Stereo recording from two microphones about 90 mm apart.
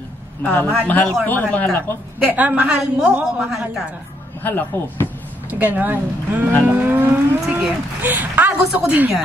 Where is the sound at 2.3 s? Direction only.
15° right (ahead or behind).